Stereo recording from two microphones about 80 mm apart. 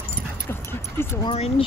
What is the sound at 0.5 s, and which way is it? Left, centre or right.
Dog, left.